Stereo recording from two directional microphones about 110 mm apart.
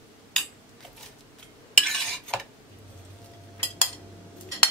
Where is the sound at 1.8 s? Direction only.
5° left (ahead or behind).